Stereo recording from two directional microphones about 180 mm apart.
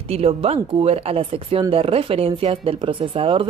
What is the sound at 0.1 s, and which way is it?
Speech, 35° right (ahead or behind).